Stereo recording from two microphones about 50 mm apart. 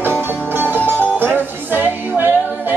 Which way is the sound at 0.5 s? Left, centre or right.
Right.